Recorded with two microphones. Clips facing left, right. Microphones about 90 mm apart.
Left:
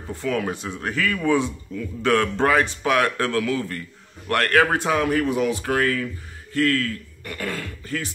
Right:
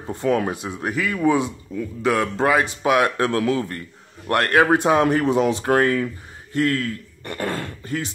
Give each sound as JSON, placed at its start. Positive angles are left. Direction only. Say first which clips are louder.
{"t": 0.0, "sound": "a man's voice", "louder": "right 4 dB", "side_deg": -25}